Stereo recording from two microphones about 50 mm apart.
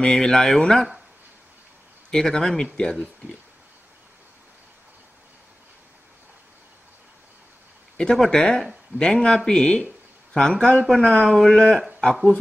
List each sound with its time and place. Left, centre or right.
0.0 s speech: centre
2.0 s speech: centre
8.0 s speech: centre